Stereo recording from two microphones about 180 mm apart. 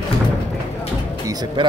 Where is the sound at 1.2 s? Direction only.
20° right (ahead or behind).